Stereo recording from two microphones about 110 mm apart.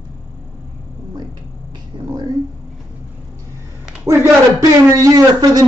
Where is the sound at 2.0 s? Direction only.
35° right (ahead or behind).